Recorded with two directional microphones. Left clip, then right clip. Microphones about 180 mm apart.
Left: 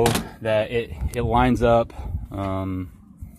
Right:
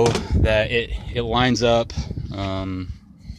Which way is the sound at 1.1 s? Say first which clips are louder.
Even; centre (ahead or behind).